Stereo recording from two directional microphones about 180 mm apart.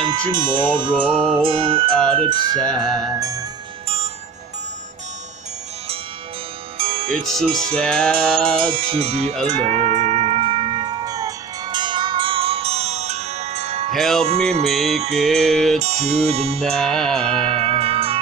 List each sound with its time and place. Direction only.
0.0 s music: 25° right (ahead or behind)
6.8 s music: 30° right (ahead or behind)
7.1 s music: 5° left (ahead or behind)
8.5 s music: 30° right (ahead or behind)
13.9 s music: centre (ahead or behind)
14.2 s music: 35° right (ahead or behind)
14.7 s music: centre (ahead or behind)
15.8 s music: 40° right (ahead or behind)
16.7 s music: 5° left (ahead or behind)
17.6 s music: 30° right (ahead or behind)